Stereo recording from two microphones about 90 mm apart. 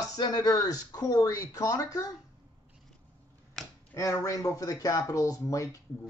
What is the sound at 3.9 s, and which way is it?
Speech, 35° left (ahead or behind).